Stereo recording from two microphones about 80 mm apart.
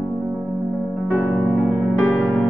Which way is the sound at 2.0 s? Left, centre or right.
Centre.